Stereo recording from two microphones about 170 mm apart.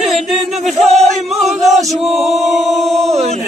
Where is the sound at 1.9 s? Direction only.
Centre (ahead or behind).